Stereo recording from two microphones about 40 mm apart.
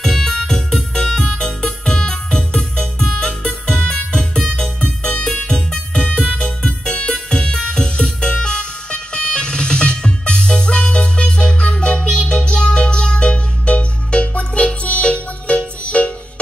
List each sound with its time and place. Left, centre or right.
0.0 s music: centre; by 16.1 s left